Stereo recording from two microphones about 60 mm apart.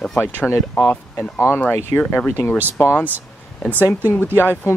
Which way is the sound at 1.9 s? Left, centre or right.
Left.